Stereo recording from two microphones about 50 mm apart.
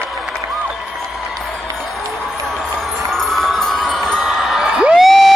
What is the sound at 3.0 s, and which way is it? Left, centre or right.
Wind chime, centre.